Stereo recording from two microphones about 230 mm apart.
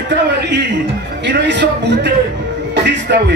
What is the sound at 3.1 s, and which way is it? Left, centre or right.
Speech, right.